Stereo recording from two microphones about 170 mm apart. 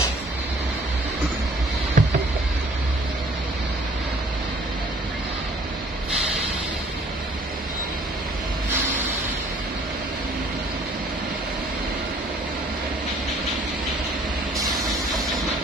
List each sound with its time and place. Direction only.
2.0 s rowboat: 50° right (ahead or behind)